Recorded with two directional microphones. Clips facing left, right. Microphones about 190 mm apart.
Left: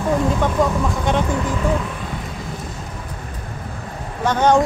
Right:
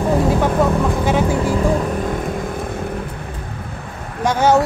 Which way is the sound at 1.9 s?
50° right (ahead or behind).